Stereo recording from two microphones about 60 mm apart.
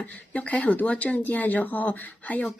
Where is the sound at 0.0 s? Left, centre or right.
Left.